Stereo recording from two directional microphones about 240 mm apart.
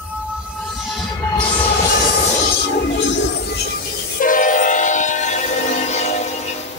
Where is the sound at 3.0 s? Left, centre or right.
Left.